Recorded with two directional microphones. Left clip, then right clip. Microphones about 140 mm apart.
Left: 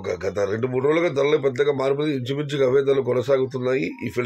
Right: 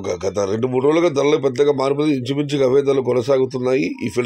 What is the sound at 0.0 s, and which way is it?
A man's voice, 35° right (ahead or behind).